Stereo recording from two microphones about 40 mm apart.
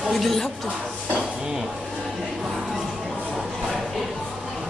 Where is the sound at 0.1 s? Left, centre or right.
Centre.